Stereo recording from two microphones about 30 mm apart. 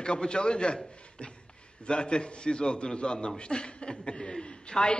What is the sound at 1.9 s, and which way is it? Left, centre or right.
A man's voice, left.